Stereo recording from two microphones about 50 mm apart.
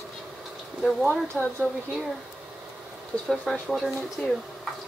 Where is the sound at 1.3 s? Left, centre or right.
Centre.